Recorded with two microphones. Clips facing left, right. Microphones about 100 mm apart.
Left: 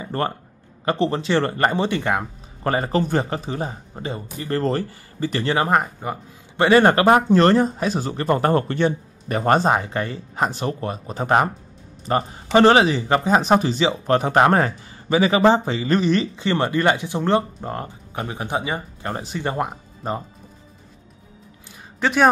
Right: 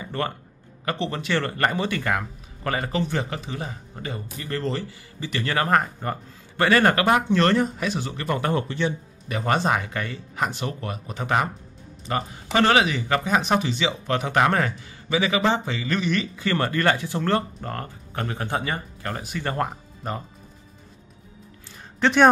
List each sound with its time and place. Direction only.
0.0 s a sound: 35° left (ahead or behind)
0.8 s speech: 35° left (ahead or behind)
5.4 s speech: 25° left (ahead or behind); by 11.5 s 40° left (ahead or behind)
12.5 s speech: 30° left (ahead or behind)
22.0 s a man's voice: 5° left (ahead or behind)